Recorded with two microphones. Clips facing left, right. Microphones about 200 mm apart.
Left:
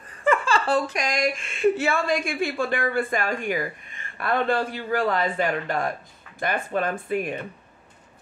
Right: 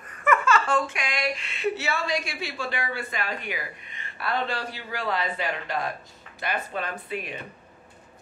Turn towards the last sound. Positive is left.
turn(degrees=50)  # may be behind; listen again after turning